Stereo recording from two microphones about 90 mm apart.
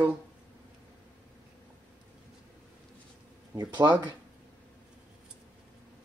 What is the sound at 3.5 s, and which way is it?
Speech, 55° right (ahead or behind).